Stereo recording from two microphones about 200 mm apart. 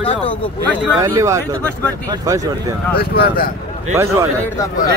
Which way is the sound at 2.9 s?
50° left (ahead or behind).